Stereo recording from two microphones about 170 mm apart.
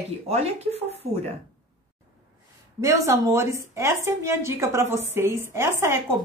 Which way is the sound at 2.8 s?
15° right (ahead or behind).